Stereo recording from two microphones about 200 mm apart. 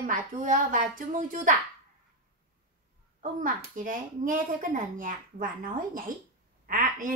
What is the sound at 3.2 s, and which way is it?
A woman's voice, 40° right (ahead or behind).